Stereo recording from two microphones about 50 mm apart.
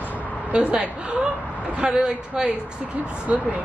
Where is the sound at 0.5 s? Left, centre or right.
Right.